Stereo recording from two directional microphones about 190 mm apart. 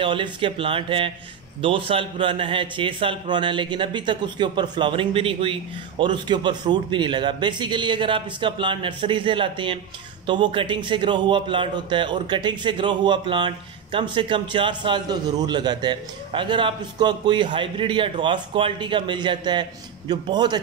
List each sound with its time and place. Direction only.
0.0 s a man's voice: 25° right (ahead or behind)